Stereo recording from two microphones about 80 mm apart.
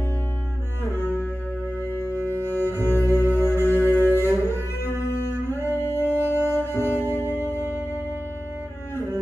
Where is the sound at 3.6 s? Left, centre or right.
Left.